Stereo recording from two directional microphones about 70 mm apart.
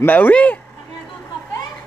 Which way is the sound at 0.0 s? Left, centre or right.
Left.